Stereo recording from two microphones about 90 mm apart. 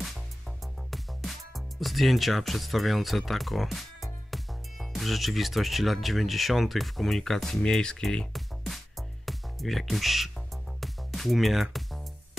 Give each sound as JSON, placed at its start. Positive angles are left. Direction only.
{"t": 0.8, "sound": "speech", "side_deg": 0}
{"t": 10.8, "sound": "music", "side_deg": 0}